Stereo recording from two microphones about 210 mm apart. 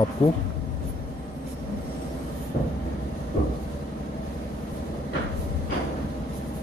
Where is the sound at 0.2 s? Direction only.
25° left (ahead or behind).